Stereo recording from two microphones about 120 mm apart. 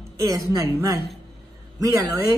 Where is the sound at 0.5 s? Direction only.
30° right (ahead or behind).